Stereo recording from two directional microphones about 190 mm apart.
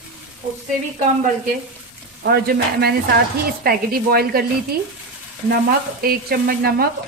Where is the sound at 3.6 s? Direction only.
55° right (ahead or behind).